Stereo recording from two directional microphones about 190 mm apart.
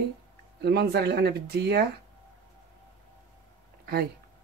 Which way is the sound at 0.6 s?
60° right (ahead or behind).